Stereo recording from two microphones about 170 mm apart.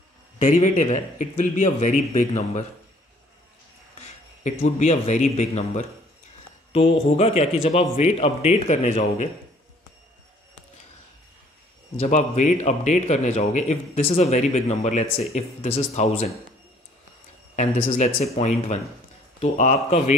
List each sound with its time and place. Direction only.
0.4 s a man's voice: 45° left (ahead or behind)
4.4 s a man's voice: 45° left (ahead or behind)
12.0 s a man's voice: 45° left (ahead or behind)
17.8 s a man's voice: 40° left (ahead or behind)